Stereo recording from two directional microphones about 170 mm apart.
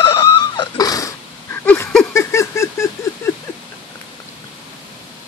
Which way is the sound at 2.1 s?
15° left (ahead or behind).